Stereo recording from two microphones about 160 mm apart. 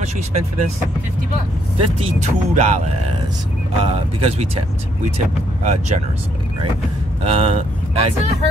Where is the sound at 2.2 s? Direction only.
45° right (ahead or behind).